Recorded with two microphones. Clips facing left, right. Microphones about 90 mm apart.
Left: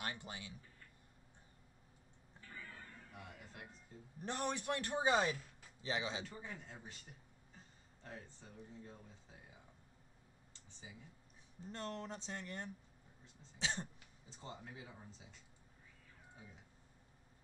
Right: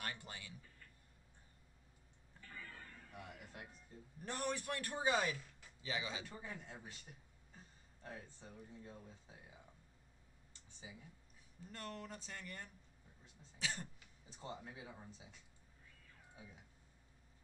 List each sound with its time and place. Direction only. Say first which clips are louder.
0.0 s a man's voice: left 2 dB; 20° left (ahead or behind)
2.4 s a sound: even; 10° left (ahead or behind)
3.1 s music: right 1 dB; centre (ahead or behind)
4.2 s a man's voice: left 1 dB; 20° left (ahead or behind)
6.2 s speech: even; 10° right (ahead or behind)
8.0 s speech: right 1 dB; 10° right (ahead or behind)
11.6 s a man's voice: left 4 dB; 25° left (ahead or behind)
13.6 s throat clearing: left 3 dB; 25° left (ahead or behind)
14.4 s speech: right 2 dB; 5° right (ahead or behind)